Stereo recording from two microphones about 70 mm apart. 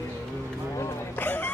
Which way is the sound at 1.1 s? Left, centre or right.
Left.